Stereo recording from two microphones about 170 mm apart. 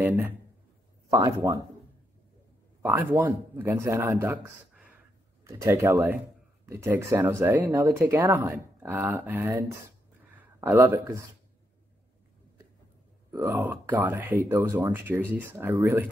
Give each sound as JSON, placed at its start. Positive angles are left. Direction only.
{"t": 1.1, "sound": "speech", "side_deg": -20}
{"t": 2.8, "sound": "speech", "side_deg": -10}
{"t": 5.4, "sound": "speech", "side_deg": -20}
{"t": 13.3, "sound": "speech", "side_deg": -15}